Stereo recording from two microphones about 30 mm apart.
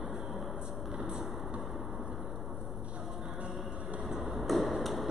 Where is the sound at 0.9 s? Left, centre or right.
Centre.